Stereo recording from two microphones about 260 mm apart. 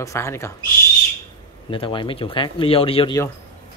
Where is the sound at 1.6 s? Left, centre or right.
Centre.